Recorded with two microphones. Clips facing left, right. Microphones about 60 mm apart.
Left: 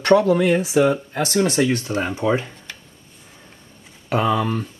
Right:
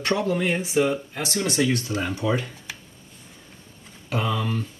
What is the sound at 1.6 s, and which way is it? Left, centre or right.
Speech, left.